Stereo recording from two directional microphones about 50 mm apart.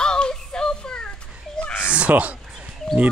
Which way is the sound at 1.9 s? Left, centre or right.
Right.